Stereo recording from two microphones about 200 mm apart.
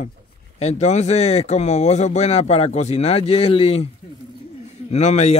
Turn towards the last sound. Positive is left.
turn(degrees=35)  # may be behind; listen again after turning